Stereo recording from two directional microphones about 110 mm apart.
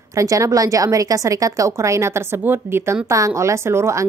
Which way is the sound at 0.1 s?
30° right (ahead or behind).